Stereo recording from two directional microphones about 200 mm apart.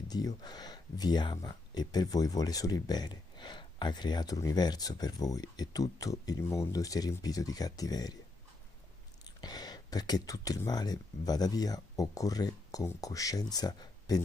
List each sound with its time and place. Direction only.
0.1 s speech: 20° left (ahead or behind)
9.4 s speech: 20° left (ahead or behind)